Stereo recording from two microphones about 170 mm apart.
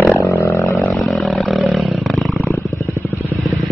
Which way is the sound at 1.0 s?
Centre (ahead or behind).